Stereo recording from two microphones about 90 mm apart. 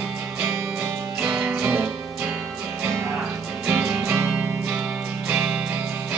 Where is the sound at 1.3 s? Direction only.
5° right (ahead or behind).